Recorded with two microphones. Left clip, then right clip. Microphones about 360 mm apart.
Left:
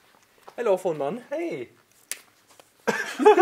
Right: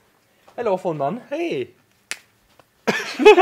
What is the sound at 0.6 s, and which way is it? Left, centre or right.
Speech, right.